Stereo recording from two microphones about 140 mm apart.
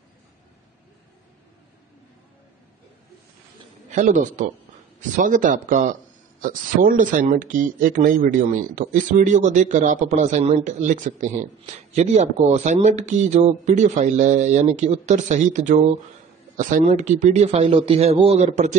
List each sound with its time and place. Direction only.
3.9 s a man's voice: 65° right (ahead or behind)
6.4 s speech: 85° right; by 18.8 s 55° right (ahead or behind)